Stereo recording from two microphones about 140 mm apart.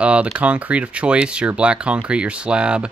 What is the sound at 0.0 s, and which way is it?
Speech, 10° right (ahead or behind).